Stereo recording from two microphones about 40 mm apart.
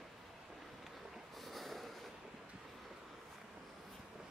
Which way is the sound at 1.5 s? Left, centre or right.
Centre.